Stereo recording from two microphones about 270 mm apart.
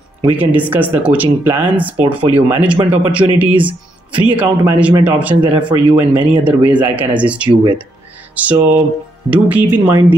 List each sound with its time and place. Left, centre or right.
0.2 s speech: centre
8.4 s speech: centre